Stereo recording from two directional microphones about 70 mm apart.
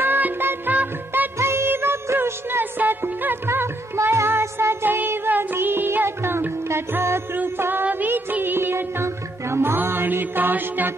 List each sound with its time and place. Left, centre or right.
0.0 s music: right
1.4 s music: right